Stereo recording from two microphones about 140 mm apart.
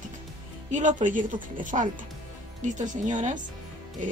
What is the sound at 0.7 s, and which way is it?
Speech, 60° right (ahead or behind).